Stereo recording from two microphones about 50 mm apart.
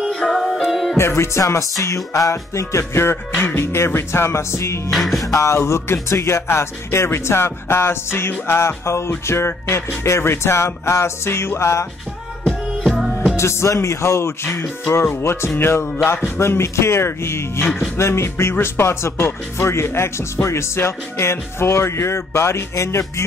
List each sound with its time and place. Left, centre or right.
0.1 s music: centre
0.9 s music: left
2.8 s speech: left
3.3 s music: left
3.6 s speech: left
4.9 s music: centre
5.7 s speech: left
13.1 s music: centre
13.4 s speech: left
15.5 s music: left
16.3 s speech: left